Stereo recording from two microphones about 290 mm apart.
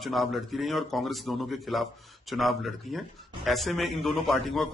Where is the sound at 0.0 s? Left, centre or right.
Centre.